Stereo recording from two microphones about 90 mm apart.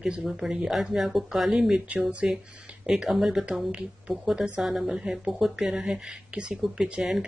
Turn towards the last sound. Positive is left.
turn(degrees=-5)  # may be behind; listen again after turning